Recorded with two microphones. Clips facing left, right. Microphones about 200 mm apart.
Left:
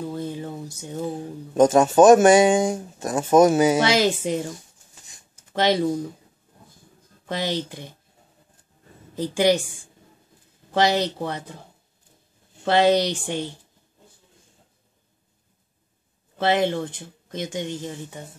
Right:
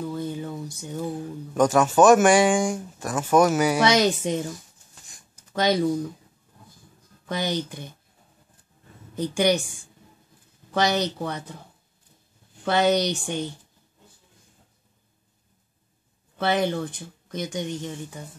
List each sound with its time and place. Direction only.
0.0 s a sound: 30° left (ahead or behind)
0.8 s speech: 25° left (ahead or behind)
5.5 s speech: 25° left (ahead or behind)
7.2 s speech: 25° left (ahead or behind)
10.7 s speech: 30° left (ahead or behind)
12.6 s speech: 30° left (ahead or behind)
16.3 s speech: 25° left (ahead or behind)